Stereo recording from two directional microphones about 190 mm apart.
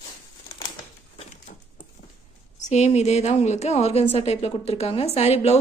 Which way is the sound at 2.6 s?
35° left (ahead or behind).